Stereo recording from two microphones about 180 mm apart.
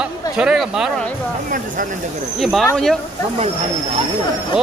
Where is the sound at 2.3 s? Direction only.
Centre (ahead or behind).